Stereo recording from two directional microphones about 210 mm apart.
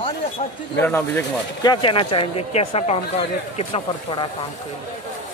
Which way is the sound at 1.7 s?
25° left (ahead or behind).